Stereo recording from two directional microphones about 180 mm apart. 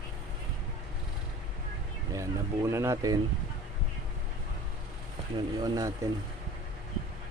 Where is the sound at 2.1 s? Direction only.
15° right (ahead or behind).